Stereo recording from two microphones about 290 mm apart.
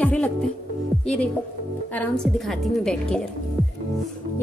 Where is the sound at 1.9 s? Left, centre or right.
Centre.